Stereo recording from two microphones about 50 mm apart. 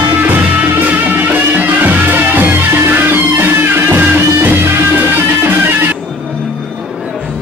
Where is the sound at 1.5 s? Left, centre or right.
Right.